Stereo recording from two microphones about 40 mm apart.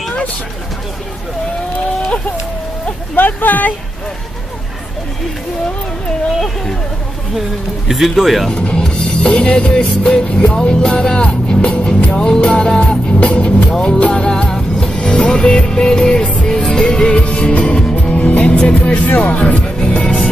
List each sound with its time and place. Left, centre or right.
3.2 s speech: left
6.4 s speech: centre
7.9 s speech: centre
8.5 s music: left
13.2 s speech: left
13.6 s music: left
18.8 s speech: left
19.0 s speech: left
19.3 s speech: left
19.9 s music: left